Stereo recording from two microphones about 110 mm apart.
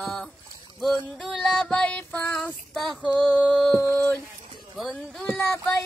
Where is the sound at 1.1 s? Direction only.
Centre (ahead or behind).